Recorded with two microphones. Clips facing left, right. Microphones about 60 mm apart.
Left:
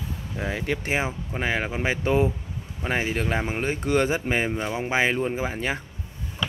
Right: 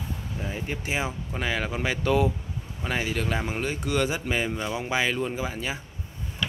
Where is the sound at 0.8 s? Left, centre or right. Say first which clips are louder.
Left 3 dB; left.